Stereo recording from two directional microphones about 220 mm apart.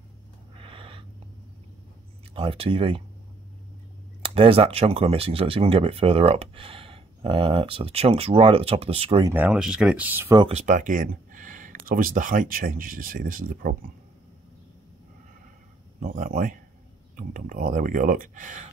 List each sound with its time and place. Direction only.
0.6 s a sound: 25° right (ahead or behind)
2.3 s speech: 25° right (ahead or behind)
4.2 s speech: 25° right (ahead or behind)
9.3 s speech: 5° right (ahead or behind)
10.4 s speech: 30° right (ahead or behind)
16.0 s speech: 40° right (ahead or behind)